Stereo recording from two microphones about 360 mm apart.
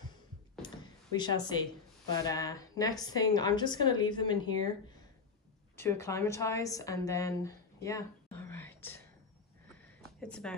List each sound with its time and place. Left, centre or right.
0.6 s a sound: centre
1.1 s a woman's voice: centre
5.8 s a woman's voice: centre
8.4 s whispering: centre
9.8 s sniff: centre